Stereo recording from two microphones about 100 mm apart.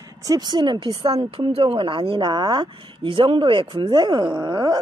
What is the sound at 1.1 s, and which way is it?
Speech, 80° right.